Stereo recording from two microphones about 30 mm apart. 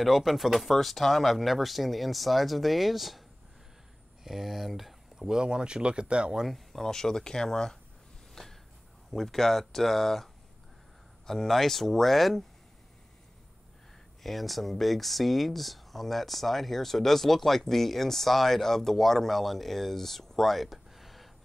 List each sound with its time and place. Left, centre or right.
0.0 s speech: centre
5.1 s speech: right
6.7 s speech: centre
9.1 s speech: centre
14.2 s speech: centre